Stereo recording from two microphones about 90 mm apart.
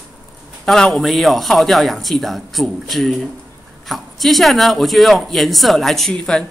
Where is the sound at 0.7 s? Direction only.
5° left (ahead or behind).